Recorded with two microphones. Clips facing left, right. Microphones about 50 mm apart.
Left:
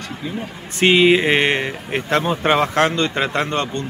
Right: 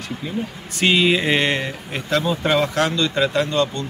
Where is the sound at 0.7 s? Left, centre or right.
Left.